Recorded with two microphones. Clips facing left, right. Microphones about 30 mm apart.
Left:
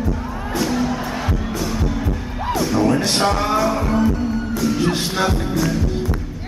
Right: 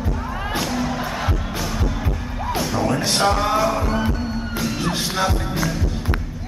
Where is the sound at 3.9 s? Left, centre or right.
Right.